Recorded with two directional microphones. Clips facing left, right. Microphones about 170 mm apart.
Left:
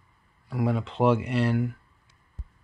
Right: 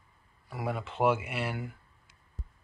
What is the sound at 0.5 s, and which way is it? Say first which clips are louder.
Speech: left 7 dB; 5° right (ahead or behind).